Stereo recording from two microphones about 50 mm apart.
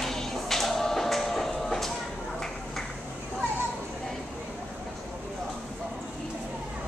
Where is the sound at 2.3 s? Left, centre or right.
Centre.